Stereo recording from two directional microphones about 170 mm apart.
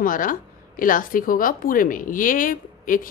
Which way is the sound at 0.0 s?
55° left (ahead or behind).